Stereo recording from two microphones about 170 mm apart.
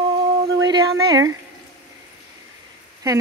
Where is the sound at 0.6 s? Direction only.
20° right (ahead or behind).